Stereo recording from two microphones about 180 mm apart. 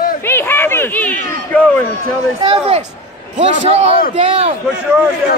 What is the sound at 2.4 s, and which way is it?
Speech, 30° right (ahead or behind).